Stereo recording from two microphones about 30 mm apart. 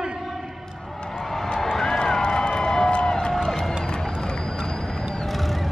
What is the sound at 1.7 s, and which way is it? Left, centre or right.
Run, centre.